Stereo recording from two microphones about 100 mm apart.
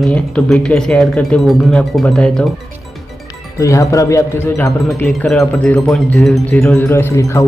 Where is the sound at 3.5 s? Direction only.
35° left (ahead or behind).